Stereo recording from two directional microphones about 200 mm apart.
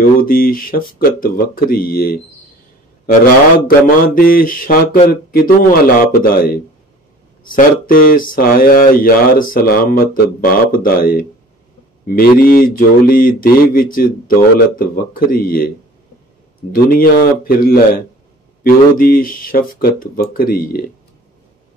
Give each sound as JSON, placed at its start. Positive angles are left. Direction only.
{"t": 0.2, "sound": "speech", "side_deg": 45}
{"t": 16.7, "sound": "speech", "side_deg": 45}